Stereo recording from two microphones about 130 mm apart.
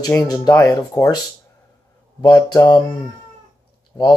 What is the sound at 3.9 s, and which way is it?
Speech, 30° left (ahead or behind).